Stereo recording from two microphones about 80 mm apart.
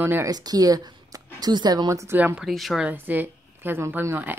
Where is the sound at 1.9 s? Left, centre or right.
Right.